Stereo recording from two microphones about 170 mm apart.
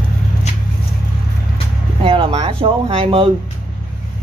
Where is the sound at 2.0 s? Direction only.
35° right (ahead or behind).